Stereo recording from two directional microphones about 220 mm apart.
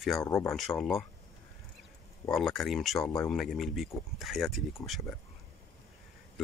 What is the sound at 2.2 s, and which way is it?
Speech, centre (ahead or behind).